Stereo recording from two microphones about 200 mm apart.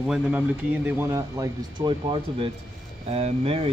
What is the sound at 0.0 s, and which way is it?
Speech, 5° right (ahead or behind).